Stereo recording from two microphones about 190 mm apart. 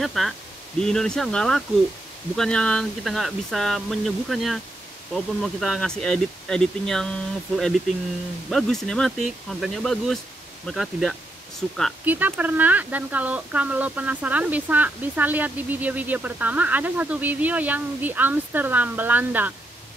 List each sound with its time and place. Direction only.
0.0 s speech: centre (ahead or behind)